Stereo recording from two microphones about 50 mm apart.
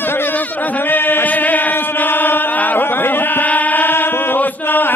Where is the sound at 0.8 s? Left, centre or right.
Left.